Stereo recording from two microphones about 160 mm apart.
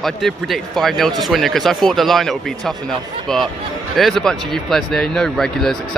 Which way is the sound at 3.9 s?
Centre (ahead or behind).